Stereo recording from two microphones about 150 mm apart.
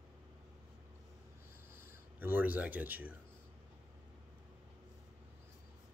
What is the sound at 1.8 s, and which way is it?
Speech, 15° right (ahead or behind).